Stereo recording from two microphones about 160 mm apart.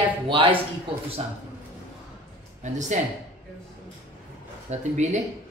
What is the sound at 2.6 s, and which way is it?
Speech, 50° right (ahead or behind).